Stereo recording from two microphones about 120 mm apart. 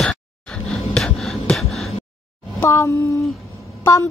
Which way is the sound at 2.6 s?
25° left (ahead or behind).